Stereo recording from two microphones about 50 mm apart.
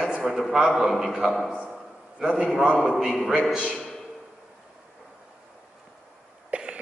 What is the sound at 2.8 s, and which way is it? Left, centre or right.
Speech, centre.